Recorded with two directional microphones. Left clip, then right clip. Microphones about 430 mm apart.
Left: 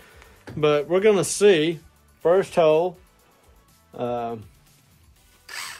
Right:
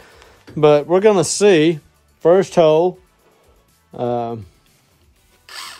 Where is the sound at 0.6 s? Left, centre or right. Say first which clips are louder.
Right 7 dB; centre.